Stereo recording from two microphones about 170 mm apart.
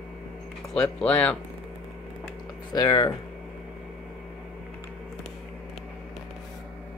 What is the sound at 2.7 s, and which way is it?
Speech, 25° left (ahead or behind).